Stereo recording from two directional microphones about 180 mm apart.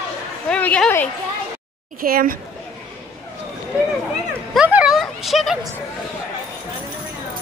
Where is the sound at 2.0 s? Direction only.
50° right (ahead or behind).